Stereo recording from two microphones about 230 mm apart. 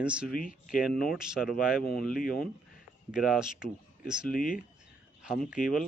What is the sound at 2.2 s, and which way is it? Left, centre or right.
Speech, left.